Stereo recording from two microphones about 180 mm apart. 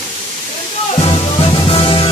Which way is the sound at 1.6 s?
30° left (ahead or behind).